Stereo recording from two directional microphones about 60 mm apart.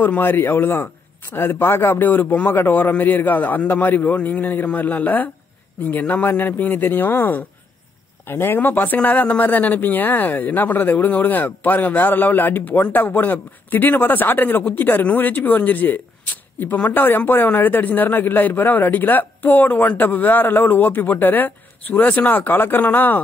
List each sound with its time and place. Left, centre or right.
0.0 s speech: left